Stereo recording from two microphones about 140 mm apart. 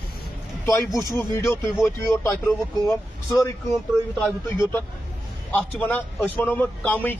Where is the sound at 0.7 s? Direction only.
20° left (ahead or behind).